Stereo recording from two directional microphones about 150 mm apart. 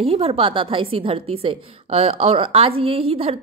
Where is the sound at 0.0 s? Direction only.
40° right (ahead or behind).